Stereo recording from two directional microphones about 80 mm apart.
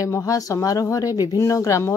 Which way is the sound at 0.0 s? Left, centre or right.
Left.